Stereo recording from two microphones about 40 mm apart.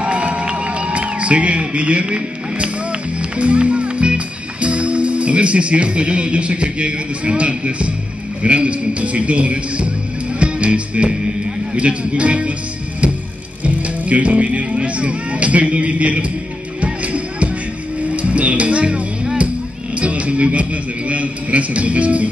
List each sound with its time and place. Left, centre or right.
0.0 s music: right
8.4 s speech: right
13.8 s speech: right
16.8 s music: right
18.0 s a man's voice: right